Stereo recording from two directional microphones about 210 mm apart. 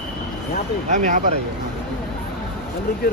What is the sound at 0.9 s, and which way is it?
Speech, 40° right (ahead or behind).